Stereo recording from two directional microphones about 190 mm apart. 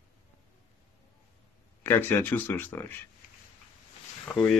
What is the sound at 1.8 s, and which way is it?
Speech, 10° left (ahead or behind).